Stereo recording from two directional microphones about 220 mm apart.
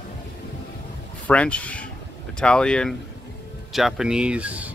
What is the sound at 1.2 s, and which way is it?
Speech, 5° left (ahead or behind).